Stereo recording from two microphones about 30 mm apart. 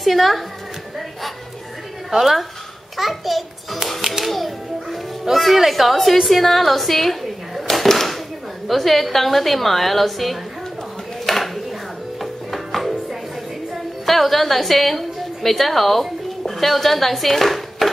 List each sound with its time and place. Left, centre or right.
0.0 s a woman's voice: centre
2.0 s a child's voice: centre
4.0 s music: centre
4.3 s music: centre
5.3 s a woman's voice: centre
5.7 s a woman's voice: centre
7.6 s a sound: centre
8.6 s a woman's voice: centre
11.2 s a sound: centre
12.2 s music: centre
14.0 s a woman's voice: centre